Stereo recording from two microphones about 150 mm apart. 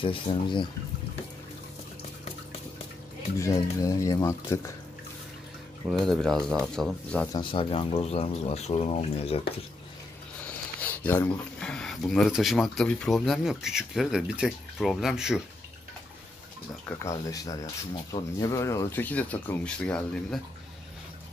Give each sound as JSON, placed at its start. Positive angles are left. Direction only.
{"t": 0.0, "sound": "speech", "side_deg": 35}
{"t": 3.3, "sound": "speech", "side_deg": 20}
{"t": 5.9, "sound": "speech", "side_deg": 0}
{"t": 7.3, "sound": "speech", "side_deg": 35}
{"t": 10.4, "sound": "speech", "side_deg": 10}
{"t": 16.8, "sound": "speech", "side_deg": 20}